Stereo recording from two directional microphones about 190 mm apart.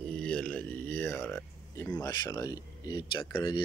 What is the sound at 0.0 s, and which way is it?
Speech, 5° left (ahead or behind).